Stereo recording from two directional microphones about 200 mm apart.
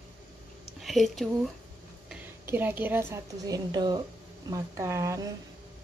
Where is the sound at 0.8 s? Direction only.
Centre (ahead or behind).